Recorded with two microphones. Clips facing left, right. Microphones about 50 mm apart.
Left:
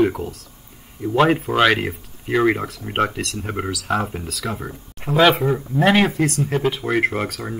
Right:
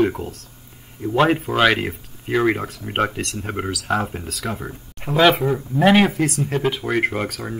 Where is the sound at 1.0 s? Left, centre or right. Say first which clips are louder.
Left 1 dB; centre.